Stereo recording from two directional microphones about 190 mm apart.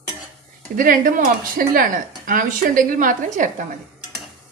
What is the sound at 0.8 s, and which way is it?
A woman's voice, 45° right (ahead or behind).